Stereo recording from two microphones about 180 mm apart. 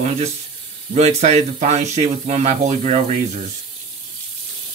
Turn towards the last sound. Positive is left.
turn(degrees=-40)  # may be behind; listen again after turning